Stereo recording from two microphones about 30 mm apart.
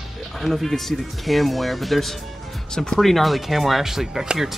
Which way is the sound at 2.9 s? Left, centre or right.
Centre.